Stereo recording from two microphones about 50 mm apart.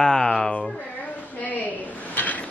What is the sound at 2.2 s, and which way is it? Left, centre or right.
Mechanisms, left.